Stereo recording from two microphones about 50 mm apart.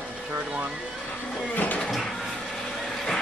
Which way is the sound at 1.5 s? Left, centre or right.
Left.